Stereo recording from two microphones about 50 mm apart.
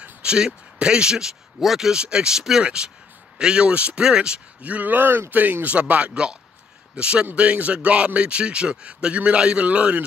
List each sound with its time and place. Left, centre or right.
0.0 s speech: right
4.6 s a man's voice: right